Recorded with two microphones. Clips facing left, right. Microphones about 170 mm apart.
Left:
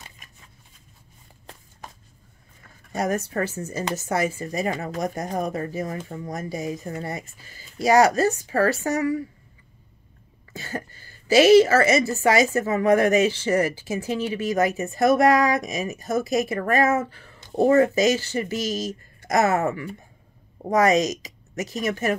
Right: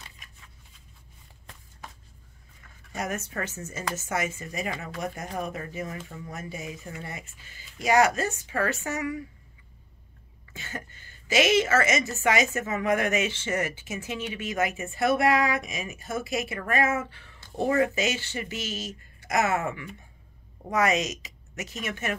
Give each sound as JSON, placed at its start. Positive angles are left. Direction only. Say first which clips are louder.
{"t": 2.9, "sound": "a woman's voice", "louder": "left 7 dB", "side_deg": 35}
{"t": 10.5, "sound": "a woman's voice", "louder": "left 7 dB", "side_deg": 35}